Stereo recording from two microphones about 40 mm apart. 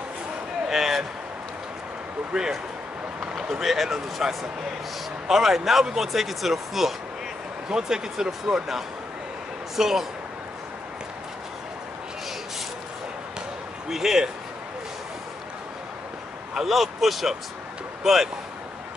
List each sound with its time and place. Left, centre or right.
0.7 s speech: centre
2.3 s a man's voice: centre
13.8 s speech: centre
16.5 s speech: centre